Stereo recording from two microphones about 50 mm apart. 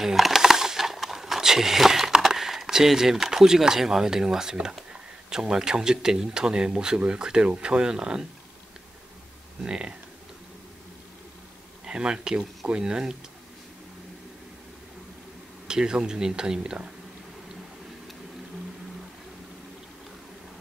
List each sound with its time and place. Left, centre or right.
0.0 s a sound: centre
5.3 s speech: centre
9.6 s speech: centre
11.8 s speech: centre
15.6 s speech: centre